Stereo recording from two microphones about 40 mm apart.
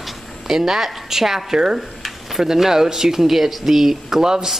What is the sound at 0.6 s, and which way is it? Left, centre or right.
Speech, centre.